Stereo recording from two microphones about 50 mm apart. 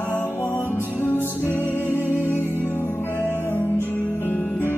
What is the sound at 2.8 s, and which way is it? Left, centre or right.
Music, left.